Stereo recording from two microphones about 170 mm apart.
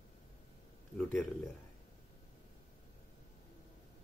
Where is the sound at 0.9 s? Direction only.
5° left (ahead or behind).